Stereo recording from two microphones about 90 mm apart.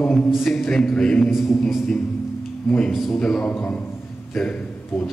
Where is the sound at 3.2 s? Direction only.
10° left (ahead or behind).